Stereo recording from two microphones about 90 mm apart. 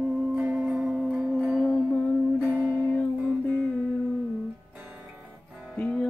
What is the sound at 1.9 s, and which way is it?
Music, 15° left (ahead or behind).